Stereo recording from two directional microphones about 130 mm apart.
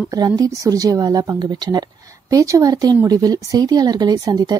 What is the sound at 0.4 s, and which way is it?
A woman's voice, 30° right (ahead or behind).